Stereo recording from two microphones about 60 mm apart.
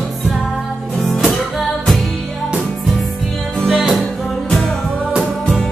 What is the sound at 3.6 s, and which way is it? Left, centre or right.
Music, centre.